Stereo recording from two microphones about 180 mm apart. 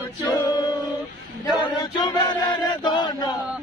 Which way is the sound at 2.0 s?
20° left (ahead or behind).